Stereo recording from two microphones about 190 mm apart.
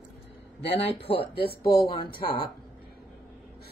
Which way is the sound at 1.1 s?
55° left (ahead or behind).